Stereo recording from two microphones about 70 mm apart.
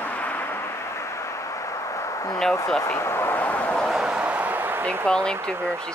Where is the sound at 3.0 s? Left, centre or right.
Left.